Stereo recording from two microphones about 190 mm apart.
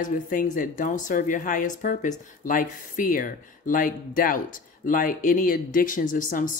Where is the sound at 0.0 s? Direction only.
45° left (ahead or behind).